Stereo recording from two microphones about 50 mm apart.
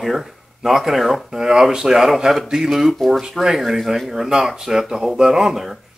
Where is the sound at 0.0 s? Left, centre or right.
Centre.